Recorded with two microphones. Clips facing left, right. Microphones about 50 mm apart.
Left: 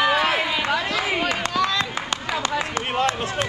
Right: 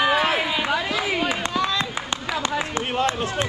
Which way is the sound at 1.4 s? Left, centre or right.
Right.